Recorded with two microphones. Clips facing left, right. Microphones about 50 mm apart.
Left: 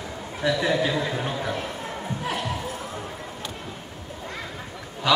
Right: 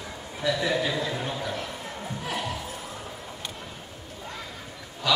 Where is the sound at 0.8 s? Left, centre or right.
Left.